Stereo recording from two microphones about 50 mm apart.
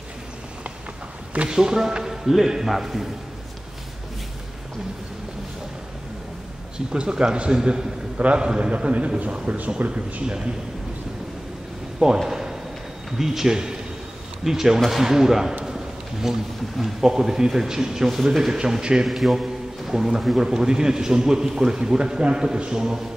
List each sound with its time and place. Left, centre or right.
1.5 s a man's voice: centre
6.9 s a man's voice: centre
12.2 s a sound: centre
13.2 s a man's voice: centre
19.0 s a man's voice: centre